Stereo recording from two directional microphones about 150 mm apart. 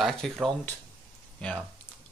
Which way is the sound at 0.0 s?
Centre (ahead or behind).